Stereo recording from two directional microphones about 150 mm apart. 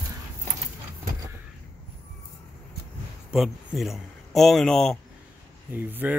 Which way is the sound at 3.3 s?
5° right (ahead or behind).